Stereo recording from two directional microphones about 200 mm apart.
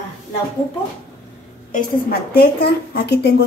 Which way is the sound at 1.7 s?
45° left (ahead or behind).